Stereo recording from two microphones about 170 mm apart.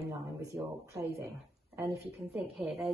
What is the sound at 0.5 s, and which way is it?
Speech, 15° right (ahead or behind).